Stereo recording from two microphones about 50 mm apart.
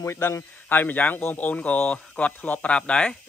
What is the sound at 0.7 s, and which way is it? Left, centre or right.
A man's voice, left.